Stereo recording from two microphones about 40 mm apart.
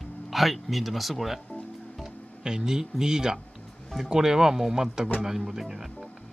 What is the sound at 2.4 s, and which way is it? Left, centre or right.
Speech, centre.